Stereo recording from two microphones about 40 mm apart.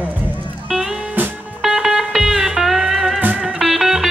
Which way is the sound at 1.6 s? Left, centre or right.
Centre.